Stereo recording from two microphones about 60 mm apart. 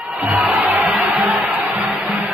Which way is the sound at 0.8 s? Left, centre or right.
Centre.